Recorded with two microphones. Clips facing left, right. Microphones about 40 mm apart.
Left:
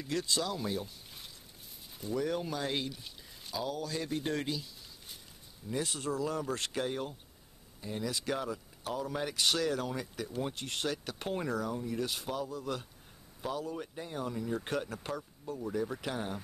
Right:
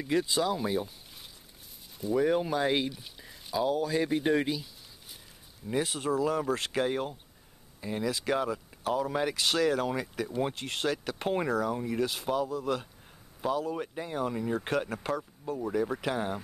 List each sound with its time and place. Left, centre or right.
0.0 s speech: centre
2.1 s speech: right
2.9 s speech: centre
5.7 s speech: right
6.7 s speech: right